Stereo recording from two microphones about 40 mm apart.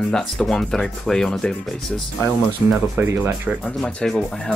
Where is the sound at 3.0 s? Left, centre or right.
Right.